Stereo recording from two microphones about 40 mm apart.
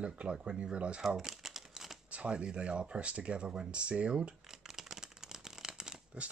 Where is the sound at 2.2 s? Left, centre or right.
Right.